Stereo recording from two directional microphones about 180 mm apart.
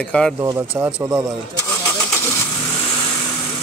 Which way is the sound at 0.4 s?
15° right (ahead or behind).